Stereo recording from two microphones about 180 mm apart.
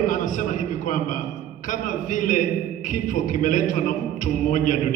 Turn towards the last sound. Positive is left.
turn(degrees=45)  # may be behind; listen again after turning